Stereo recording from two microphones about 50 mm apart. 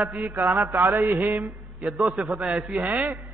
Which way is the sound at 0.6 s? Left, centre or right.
Right.